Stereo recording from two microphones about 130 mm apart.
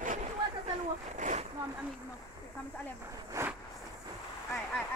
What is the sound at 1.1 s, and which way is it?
Speech, 65° right (ahead or behind).